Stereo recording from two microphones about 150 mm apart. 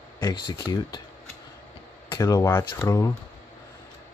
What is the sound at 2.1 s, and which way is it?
Speech, 25° left (ahead or behind).